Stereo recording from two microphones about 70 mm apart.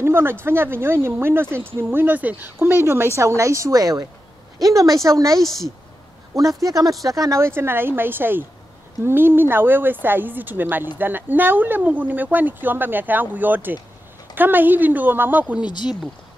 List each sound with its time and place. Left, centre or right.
0.0 s speech: right
3.2 s a woman's voice: right
4.6 s a woman's voice: right
5.4 s a woman's voice: centre
6.3 s speech: right
15.6 s speech: left